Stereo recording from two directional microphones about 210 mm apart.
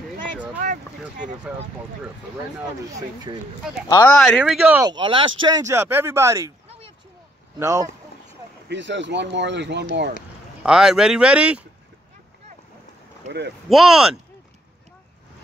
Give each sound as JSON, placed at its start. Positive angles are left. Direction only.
{"t": 4.1, "sound": "speech", "side_deg": 0}
{"t": 4.8, "sound": "speech", "side_deg": -20}
{"t": 7.5, "sound": "speech", "side_deg": -15}
{"t": 8.6, "sound": "speech", "side_deg": -60}
{"t": 10.6, "sound": "speech", "side_deg": -5}
{"t": 13.2, "sound": "speech", "side_deg": -35}
{"t": 13.7, "sound": "speech", "side_deg": 0}